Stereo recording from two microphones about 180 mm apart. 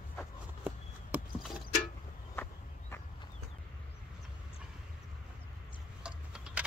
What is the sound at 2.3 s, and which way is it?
Walk, 10° left (ahead or behind).